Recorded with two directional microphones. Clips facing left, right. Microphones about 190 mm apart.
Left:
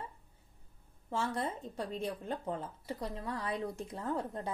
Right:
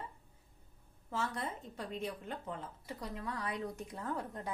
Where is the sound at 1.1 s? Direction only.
30° left (ahead or behind).